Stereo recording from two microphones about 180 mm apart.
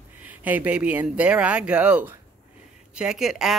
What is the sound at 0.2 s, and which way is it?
Speech, 10° right (ahead or behind).